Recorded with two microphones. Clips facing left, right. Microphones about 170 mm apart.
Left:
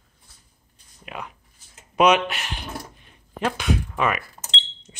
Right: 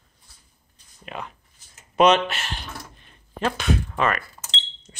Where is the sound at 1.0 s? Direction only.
10° left (ahead or behind).